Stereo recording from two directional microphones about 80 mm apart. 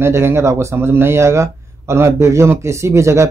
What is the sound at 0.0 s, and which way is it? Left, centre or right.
Speech, right.